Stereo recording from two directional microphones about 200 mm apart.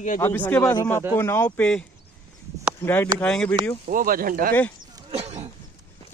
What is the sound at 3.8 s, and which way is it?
Speech, 45° right (ahead or behind).